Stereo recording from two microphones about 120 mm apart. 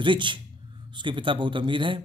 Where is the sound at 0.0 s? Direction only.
40° right (ahead or behind).